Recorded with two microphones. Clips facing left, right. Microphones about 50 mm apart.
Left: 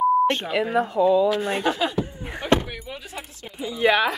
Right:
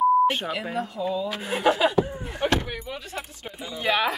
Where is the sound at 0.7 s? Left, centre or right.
Left.